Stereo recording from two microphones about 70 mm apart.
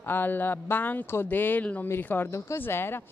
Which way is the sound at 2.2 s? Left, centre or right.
Left.